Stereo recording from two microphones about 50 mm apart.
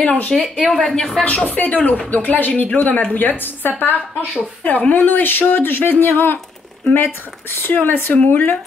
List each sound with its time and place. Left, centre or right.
0.0 s speech: left
1.2 s a woman's voice: left